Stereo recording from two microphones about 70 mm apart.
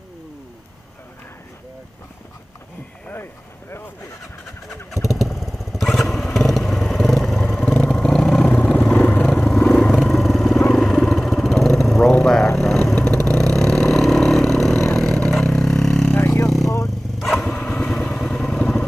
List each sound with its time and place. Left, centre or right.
4.6 s motorcycle: centre
7.9 s vehicle: centre
8.5 s vehicle: left
8.8 s vehicle: centre
16.2 s vehicle: left
16.6 s vehicle: left
17.4 s vehicle: centre
17.9 s vehicle: centre